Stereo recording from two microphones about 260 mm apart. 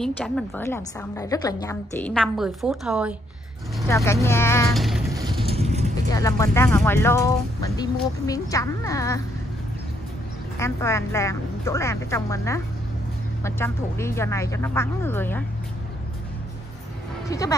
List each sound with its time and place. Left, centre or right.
0.0 s a woman's voice: centre
3.9 s speech: centre
5.1 s vehicle: centre
6.0 s speech: centre
10.6 s speech: centre
17.3 s speech: centre